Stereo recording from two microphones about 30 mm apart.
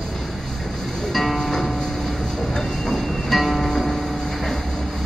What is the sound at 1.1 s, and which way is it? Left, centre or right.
Music, centre.